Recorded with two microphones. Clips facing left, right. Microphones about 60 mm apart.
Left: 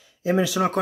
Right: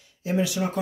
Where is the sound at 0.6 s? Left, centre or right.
Left.